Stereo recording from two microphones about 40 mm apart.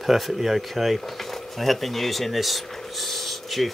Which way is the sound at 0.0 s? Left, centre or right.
Centre.